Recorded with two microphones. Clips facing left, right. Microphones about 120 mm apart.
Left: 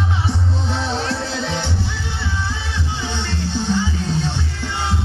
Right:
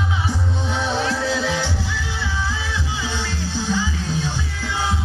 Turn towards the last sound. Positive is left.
turn(degrees=60)  # may be behind; listen again after turning